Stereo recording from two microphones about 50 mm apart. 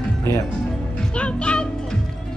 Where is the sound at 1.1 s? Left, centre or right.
Left.